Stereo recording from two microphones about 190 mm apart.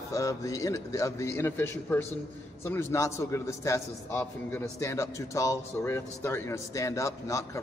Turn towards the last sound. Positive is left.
turn(degrees=15)  # may be behind; listen again after turning